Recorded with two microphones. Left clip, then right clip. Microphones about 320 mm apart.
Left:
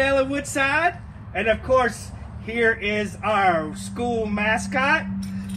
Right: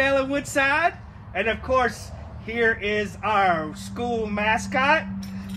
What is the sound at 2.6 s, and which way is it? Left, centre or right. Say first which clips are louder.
Speech: left 1 dB; centre.